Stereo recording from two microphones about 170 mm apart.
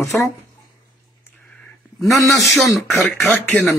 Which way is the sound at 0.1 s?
10° left (ahead or behind).